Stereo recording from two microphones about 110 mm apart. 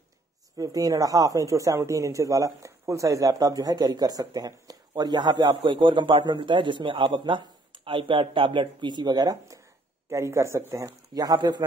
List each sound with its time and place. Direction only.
0.6 s a woman's voice: 35° right (ahead or behind)